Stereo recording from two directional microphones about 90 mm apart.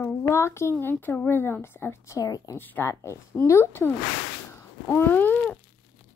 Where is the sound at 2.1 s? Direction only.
40° left (ahead or behind).